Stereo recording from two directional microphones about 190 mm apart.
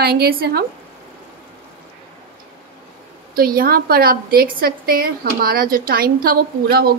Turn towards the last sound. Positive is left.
turn(degrees=-55)  # may be behind; listen again after turning